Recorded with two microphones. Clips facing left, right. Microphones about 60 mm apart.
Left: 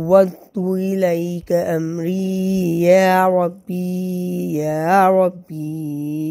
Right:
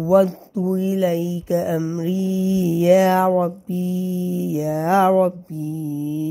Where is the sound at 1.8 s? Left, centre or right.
Left.